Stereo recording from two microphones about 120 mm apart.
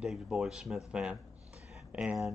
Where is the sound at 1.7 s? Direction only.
10° right (ahead or behind).